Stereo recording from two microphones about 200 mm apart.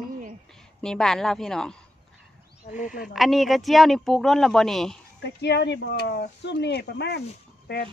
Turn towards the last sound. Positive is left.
turn(degrees=55)  # may be behind; listen again after turning